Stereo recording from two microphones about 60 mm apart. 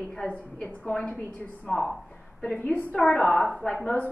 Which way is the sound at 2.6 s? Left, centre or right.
Left.